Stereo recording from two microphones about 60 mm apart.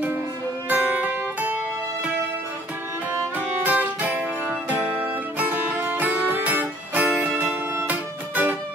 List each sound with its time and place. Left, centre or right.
0.7 s music: right
3.3 s music: right